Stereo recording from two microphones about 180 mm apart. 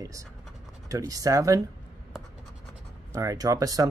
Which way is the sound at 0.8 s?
20° right (ahead or behind).